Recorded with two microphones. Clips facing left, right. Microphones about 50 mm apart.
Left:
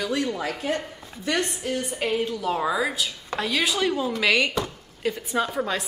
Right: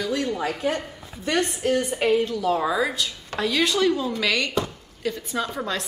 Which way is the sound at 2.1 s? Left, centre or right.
Centre.